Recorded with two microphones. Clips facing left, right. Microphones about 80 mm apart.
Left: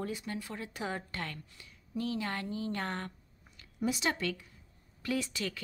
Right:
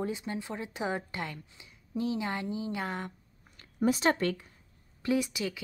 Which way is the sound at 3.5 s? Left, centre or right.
Right.